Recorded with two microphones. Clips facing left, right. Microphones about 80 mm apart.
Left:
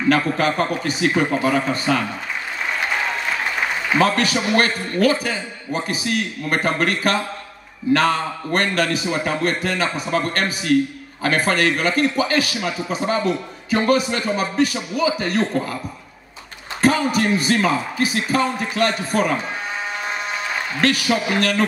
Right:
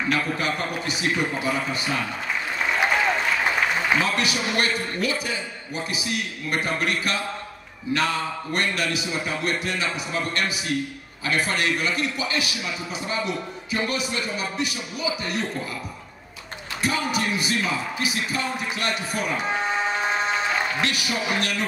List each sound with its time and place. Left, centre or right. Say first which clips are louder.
0.1 s a man's voice: left 9 dB; left
4.0 s a man's voice: left 6 dB; left
16.8 s a man's voice: left 7 dB; left
21.4 s a man's voice: left 7 dB; left